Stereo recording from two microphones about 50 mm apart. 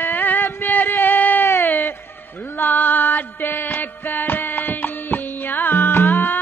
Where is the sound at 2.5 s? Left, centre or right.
Left.